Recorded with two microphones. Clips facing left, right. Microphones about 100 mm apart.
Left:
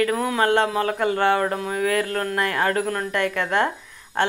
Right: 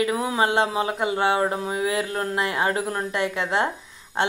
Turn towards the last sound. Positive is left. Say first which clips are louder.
# left 2 dB
turn(degrees=-20)  # may be behind; listen again after turning